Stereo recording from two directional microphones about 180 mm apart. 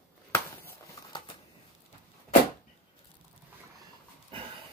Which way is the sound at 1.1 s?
25° left (ahead or behind).